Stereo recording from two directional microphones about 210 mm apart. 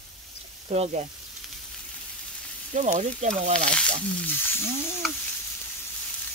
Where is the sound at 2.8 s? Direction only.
35° right (ahead or behind).